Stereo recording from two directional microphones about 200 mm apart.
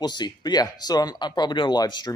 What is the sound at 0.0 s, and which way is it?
Speech, 20° left (ahead or behind).